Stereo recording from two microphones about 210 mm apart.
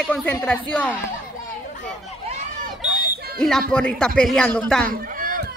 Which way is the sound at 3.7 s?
5° left (ahead or behind).